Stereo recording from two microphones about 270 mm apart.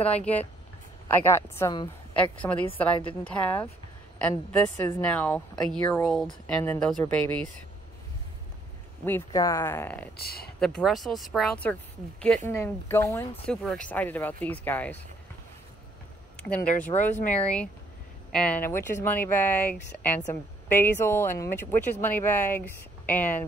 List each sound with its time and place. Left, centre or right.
0.2 s speech: centre
9.0 s speech: centre
10.1 s speech: left
10.6 s speech: centre
16.3 s speech: centre